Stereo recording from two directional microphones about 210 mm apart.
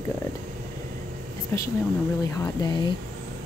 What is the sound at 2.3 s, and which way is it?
Speech, 15° left (ahead or behind).